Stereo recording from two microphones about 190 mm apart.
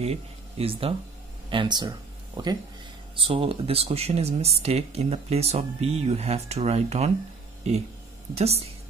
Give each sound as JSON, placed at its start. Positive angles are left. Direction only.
{"t": 0.0, "sound": "speech", "side_deg": -35}
{"t": 8.4, "sound": "speech", "side_deg": -35}